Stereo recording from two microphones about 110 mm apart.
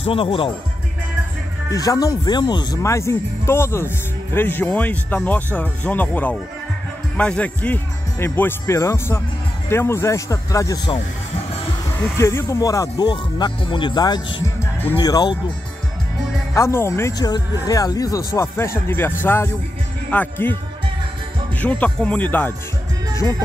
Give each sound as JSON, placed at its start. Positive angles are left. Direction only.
{"t": 0.0, "sound": "speech", "side_deg": 55}
{"t": 1.7, "sound": "speech", "side_deg": 35}
{"t": 2.8, "sound": "speech", "side_deg": 25}
{"t": 12.2, "sound": "speech", "side_deg": 25}
{"t": 14.6, "sound": "music", "side_deg": 20}
{"t": 15.0, "sound": "speech", "side_deg": 40}
{"t": 16.5, "sound": "speech", "side_deg": 25}
{"t": 17.2, "sound": "speech", "side_deg": 35}
{"t": 21.5, "sound": "speech", "side_deg": 10}